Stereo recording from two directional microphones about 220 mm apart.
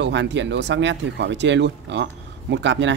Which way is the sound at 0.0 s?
55° right (ahead or behind).